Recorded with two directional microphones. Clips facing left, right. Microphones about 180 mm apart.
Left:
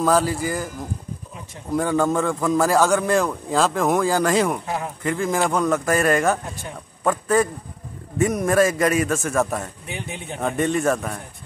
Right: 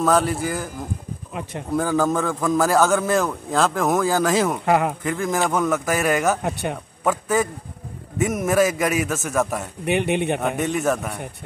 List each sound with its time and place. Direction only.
0.0 s a man's voice: centre (ahead or behind)
1.8 s a man's voice: centre (ahead or behind)
4.6 s speech: 70° right (ahead or behind)
5.0 s a man's voice: centre (ahead or behind)
6.4 s speech: 70° right (ahead or behind)
7.0 s a man's voice: 5° right (ahead or behind)
9.8 s speech: 70° right (ahead or behind)
10.4 s a man's voice: 5° right (ahead or behind)